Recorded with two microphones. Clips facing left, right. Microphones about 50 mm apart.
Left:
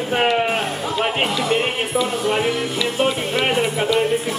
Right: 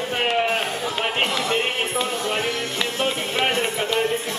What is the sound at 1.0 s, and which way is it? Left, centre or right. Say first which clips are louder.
Music: left 3 dB; centre.